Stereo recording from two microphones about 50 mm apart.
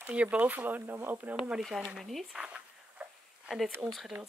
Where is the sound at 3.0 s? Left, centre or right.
Right.